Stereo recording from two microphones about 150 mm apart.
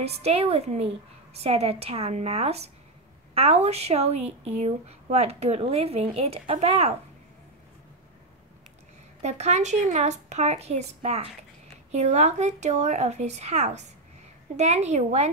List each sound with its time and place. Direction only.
0.0 s speech: 45° right (ahead or behind)
9.2 s speech: 50° right (ahead or behind)